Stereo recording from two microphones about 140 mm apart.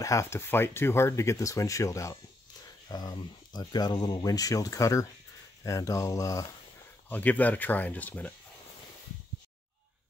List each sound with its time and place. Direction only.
0.0 s speech: 20° left (ahead or behind)
7.1 s speech: 10° left (ahead or behind)